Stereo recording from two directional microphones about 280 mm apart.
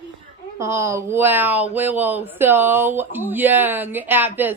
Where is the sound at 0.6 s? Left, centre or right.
Centre.